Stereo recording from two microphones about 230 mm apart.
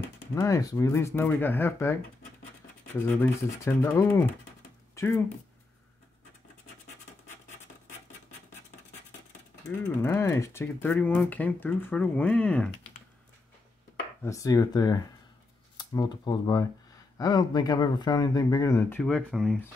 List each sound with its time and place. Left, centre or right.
0.3 s speech: centre
9.6 s speech: centre
14.2 s speech: centre